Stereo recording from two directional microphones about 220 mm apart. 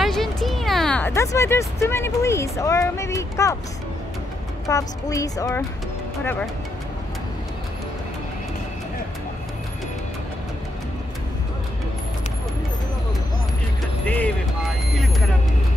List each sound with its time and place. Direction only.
0.0 s speech: centre (ahead or behind)
4.6 s a woman's voice: 15° left (ahead or behind)
14.0 s speech: 5° left (ahead or behind)